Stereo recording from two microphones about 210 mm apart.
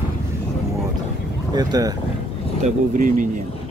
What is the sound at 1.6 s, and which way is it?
Speech, 20° right (ahead or behind).